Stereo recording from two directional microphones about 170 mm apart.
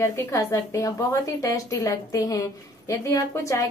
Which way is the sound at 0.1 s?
15° left (ahead or behind).